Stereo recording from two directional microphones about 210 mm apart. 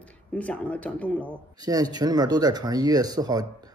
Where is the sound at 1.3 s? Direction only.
15° right (ahead or behind).